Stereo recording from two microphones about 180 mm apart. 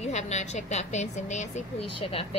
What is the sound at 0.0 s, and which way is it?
A woman's voice, 40° left (ahead or behind).